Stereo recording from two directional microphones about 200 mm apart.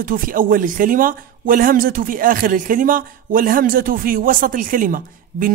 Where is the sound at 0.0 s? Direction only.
45° right (ahead or behind).